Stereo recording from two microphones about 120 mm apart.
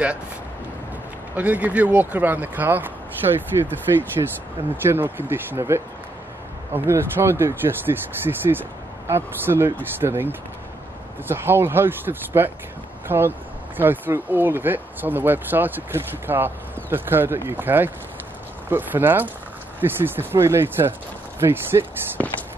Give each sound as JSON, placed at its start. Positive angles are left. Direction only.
{"t": 1.3, "sound": "speech", "side_deg": -10}
{"t": 3.5, "sound": "speech", "side_deg": -30}
{"t": 4.8, "sound": "speech", "side_deg": -15}